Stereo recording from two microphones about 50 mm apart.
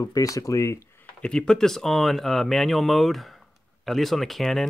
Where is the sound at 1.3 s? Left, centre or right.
Centre.